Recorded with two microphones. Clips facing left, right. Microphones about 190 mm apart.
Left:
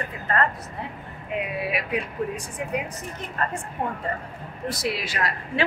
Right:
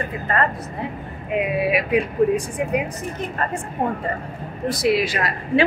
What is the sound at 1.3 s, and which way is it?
A woman's voice, 15° right (ahead or behind).